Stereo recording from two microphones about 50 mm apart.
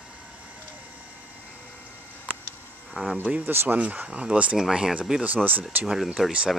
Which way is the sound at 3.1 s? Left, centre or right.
Right.